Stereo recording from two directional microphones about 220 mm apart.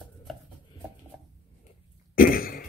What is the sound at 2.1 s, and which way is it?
Throat clearing, 40° left (ahead or behind).